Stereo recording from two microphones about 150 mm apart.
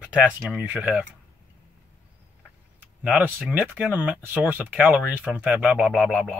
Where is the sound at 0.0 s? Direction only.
10° right (ahead or behind).